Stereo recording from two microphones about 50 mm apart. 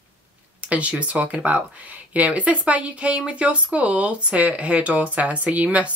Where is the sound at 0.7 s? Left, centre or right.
Right.